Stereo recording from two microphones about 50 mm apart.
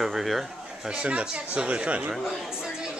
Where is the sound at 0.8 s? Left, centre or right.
Right.